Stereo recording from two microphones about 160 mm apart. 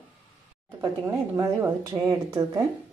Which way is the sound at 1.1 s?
20° right (ahead or behind).